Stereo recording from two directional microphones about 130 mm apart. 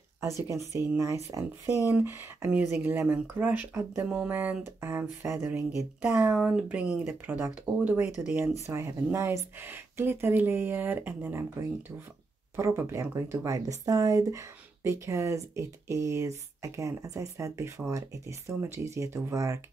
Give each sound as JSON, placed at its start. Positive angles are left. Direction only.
{"t": 0.5, "sound": "speech", "side_deg": -25}
{"t": 12.5, "sound": "speech", "side_deg": -20}